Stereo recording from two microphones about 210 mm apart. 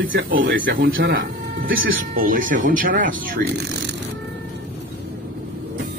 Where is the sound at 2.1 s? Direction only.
40° right (ahead or behind).